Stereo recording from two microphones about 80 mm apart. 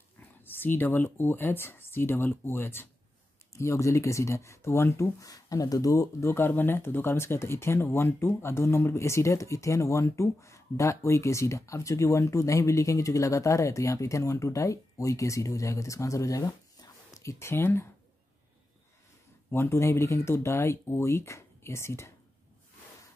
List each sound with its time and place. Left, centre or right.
0.6 s speech: left
3.5 s speech: left
5.3 s speech: left
6.3 s speech: left
19.5 s speech: left